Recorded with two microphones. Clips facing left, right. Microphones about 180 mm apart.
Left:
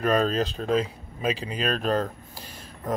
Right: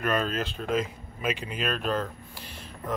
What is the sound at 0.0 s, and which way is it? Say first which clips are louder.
Speech: left 5 dB; 35° left (ahead or behind).